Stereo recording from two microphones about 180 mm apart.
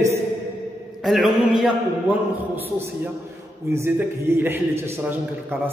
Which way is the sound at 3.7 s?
10° right (ahead or behind).